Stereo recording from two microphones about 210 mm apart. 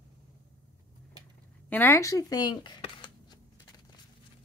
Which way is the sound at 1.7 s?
10° left (ahead or behind).